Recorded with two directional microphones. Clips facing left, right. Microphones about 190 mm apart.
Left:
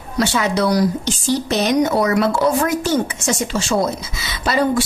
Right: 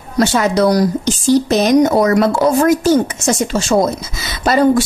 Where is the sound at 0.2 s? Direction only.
45° right (ahead or behind).